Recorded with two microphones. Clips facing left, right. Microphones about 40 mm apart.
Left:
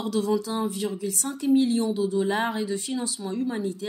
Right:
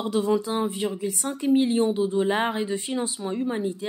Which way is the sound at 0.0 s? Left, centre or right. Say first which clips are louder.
Right 2 dB; right.